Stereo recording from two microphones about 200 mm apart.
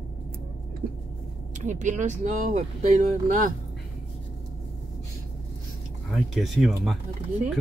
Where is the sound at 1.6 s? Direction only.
35° right (ahead or behind).